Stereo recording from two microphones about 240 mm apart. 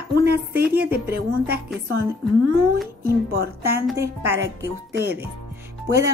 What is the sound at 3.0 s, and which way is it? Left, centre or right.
A woman's voice, right.